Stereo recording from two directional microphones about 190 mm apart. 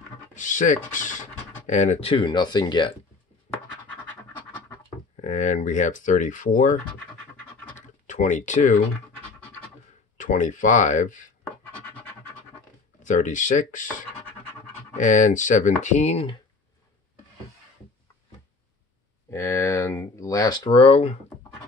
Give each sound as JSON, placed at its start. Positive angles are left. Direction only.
{"t": 0.3, "sound": "speech", "side_deg": 40}
{"t": 3.8, "sound": "scratch", "side_deg": 10}
{"t": 5.1, "sound": "speech", "side_deg": 35}
{"t": 7.7, "sound": "a sound", "side_deg": 40}
{"t": 10.1, "sound": "speech", "side_deg": 40}
{"t": 13.0, "sound": "speech", "side_deg": 40}
{"t": 19.3, "sound": "speech", "side_deg": 15}